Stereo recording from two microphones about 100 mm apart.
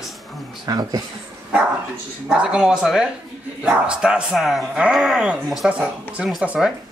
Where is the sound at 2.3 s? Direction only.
10° right (ahead or behind).